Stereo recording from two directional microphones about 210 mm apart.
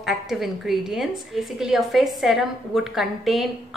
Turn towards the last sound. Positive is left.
turn(degrees=0)  # may be behind; listen again after turning